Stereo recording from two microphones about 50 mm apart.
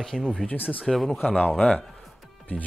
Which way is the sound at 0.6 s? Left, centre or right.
Left.